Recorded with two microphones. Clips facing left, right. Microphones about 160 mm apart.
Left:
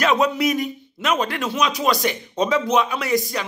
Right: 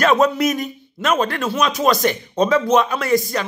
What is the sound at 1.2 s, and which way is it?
Speech, 15° left (ahead or behind).